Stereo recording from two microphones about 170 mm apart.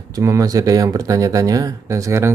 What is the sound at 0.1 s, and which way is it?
Speech, 20° right (ahead or behind).